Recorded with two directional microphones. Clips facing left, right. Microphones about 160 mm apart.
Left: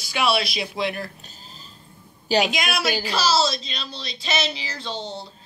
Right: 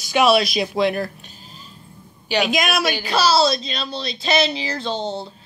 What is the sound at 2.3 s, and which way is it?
Speech, 30° left (ahead or behind).